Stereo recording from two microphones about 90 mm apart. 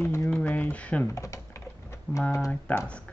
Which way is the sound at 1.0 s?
35° left (ahead or behind).